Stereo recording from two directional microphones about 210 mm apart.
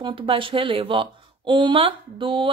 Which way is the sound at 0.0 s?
25° right (ahead or behind).